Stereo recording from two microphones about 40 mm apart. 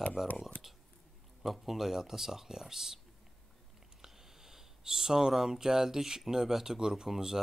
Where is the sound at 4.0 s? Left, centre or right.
Centre.